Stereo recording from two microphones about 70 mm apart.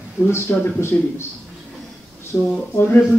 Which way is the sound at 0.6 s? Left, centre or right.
Left.